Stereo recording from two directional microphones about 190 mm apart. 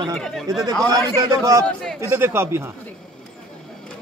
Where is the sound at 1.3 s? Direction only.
15° right (ahead or behind).